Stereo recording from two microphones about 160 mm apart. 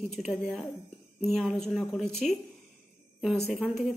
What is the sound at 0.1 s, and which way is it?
A woman's voice, centre (ahead or behind).